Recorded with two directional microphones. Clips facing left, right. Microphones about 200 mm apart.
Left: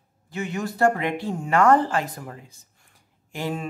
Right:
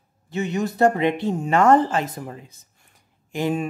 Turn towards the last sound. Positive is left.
turn(degrees=-15)  # may be behind; listen again after turning